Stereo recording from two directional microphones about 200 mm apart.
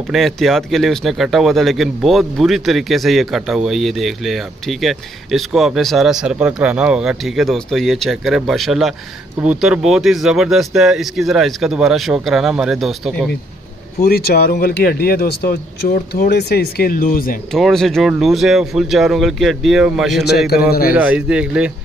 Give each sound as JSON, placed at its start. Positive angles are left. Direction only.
{"t": 0.1, "sound": "speech", "side_deg": 0}
{"t": 14.0, "sound": "a man's voice", "side_deg": 50}
{"t": 17.5, "sound": "speech", "side_deg": 0}